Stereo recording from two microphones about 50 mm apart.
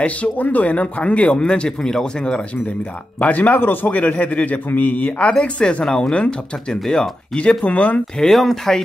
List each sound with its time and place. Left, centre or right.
0.0 s speech: left
1.3 s speech: centre
3.2 s a man's voice: left
8.2 s speech: centre